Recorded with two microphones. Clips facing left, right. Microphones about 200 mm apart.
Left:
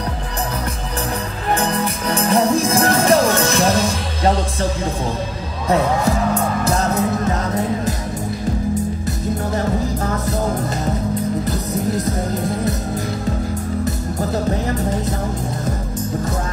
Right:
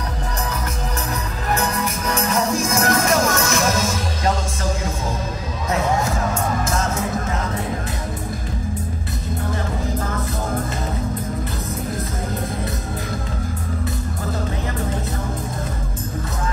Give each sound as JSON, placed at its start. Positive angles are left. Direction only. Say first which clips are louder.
{"t": 1.5, "sound": "music", "louder": "left 3 dB", "side_deg": 30}
{"t": 6.6, "sound": "music", "louder": "left 4 dB", "side_deg": 35}